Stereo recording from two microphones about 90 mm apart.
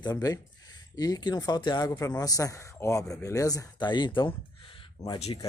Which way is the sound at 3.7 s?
55° left (ahead or behind).